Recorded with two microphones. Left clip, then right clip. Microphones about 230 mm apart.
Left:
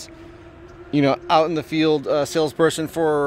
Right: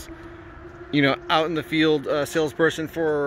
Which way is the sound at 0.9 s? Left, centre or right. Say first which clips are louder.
Left 3 dB; centre.